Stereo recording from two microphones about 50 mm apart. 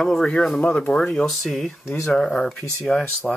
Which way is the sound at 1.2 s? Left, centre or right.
Centre.